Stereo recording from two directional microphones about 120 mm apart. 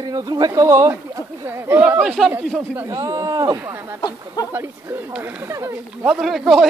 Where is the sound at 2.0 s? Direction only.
Centre (ahead or behind).